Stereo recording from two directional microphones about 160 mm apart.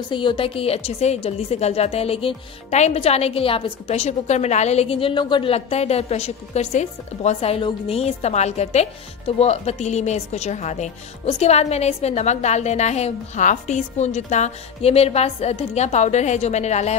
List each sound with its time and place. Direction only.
0.1 s a woman's voice: 30° left (ahead or behind)